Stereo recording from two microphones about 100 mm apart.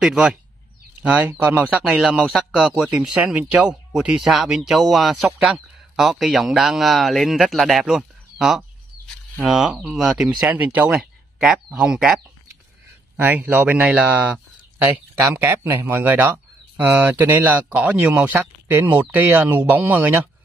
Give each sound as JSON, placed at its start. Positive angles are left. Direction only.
{"t": 0.0, "sound": "speech", "side_deg": -5}
{"t": 1.0, "sound": "speech", "side_deg": -15}
{"t": 1.9, "sound": "speech", "side_deg": -5}
{"t": 10.4, "sound": "speech", "side_deg": -15}
{"t": 11.0, "sound": "speech", "side_deg": -5}
{"t": 13.2, "sound": "speech", "side_deg": -20}
{"t": 15.4, "sound": "speech", "side_deg": -25}